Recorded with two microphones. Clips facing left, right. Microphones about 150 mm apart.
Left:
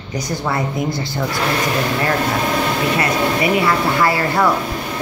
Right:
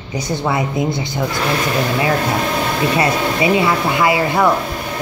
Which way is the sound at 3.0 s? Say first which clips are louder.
Right 1 dB; 20° right (ahead or behind).